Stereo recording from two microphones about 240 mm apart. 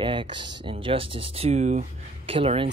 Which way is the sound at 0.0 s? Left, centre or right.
Centre.